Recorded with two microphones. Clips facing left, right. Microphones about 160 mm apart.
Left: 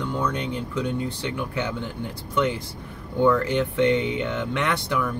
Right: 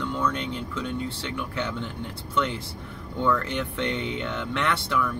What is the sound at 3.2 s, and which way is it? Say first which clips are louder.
Speech: left 6 dB; 10° left (ahead or behind).